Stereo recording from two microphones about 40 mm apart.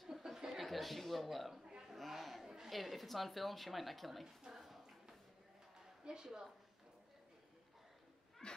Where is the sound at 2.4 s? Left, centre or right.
Centre.